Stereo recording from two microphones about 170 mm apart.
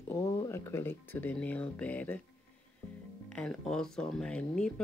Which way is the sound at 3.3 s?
5° left (ahead or behind).